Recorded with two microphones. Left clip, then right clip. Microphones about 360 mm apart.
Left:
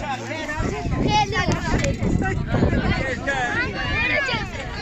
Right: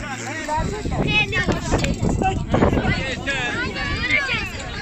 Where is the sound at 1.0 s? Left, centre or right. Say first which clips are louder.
Even; centre.